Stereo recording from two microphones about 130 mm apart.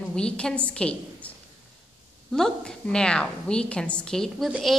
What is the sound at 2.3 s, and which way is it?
A woman's voice, 5° left (ahead or behind).